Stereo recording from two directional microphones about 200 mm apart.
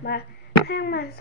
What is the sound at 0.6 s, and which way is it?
Speech, 55° left (ahead or behind).